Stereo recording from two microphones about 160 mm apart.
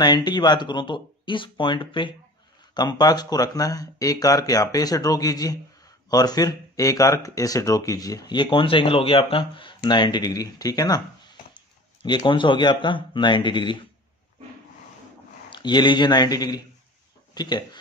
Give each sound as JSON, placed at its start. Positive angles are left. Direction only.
{"t": 0.0, "sound": "speech", "side_deg": 25}
{"t": 15.5, "sound": "speech", "side_deg": 30}